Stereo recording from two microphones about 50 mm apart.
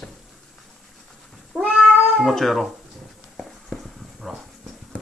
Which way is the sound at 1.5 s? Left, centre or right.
Centre.